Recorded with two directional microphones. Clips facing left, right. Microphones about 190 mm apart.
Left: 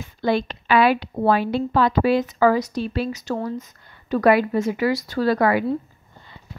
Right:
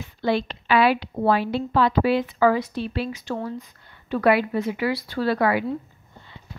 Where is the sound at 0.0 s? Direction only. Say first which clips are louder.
Left 2 dB; 50° left (ahead or behind).